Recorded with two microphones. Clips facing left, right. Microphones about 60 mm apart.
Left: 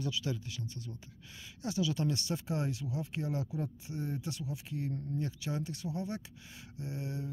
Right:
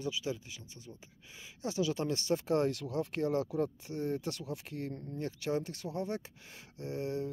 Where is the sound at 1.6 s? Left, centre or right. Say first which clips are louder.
Even; right.